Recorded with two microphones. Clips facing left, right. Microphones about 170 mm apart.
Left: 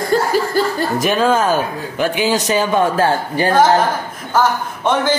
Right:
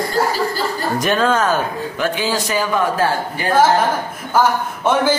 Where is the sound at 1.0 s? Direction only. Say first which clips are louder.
Left 1 dB; 10° left (ahead or behind); by 3.4 s 30° left (ahead or behind).